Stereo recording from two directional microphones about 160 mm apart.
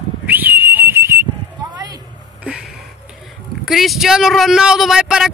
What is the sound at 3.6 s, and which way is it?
Speech, centre (ahead or behind).